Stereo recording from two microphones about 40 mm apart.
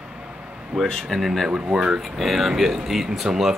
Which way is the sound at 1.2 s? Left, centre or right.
Centre.